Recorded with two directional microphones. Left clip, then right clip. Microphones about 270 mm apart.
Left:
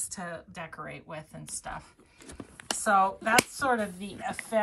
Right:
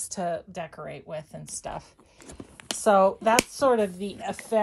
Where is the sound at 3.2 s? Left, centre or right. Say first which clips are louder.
Right 4 dB; centre.